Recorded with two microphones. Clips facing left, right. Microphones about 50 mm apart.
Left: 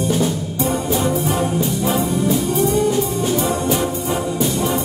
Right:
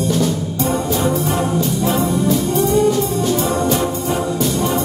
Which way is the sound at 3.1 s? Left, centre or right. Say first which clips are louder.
Right 2 dB; centre.